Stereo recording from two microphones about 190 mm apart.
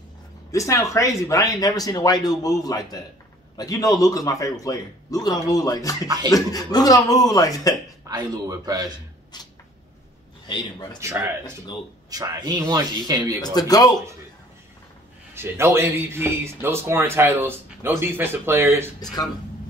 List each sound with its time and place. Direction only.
0.5 s a man's voice: 15° left (ahead or behind)
8.1 s speech: 20° right (ahead or behind)
10.4 s a man's voice: 25° left (ahead or behind)
11.0 s speech: 15° right (ahead or behind)
13.4 s a man's voice: 20° left (ahead or behind)
15.3 s speech: 15° right (ahead or behind)